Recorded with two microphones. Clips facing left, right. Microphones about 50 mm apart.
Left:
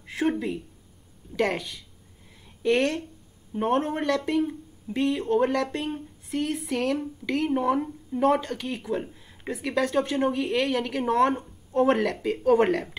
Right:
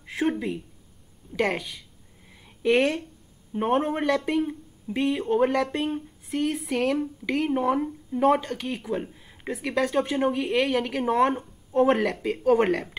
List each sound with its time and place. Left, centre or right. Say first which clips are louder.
0.0 s speech: even; centre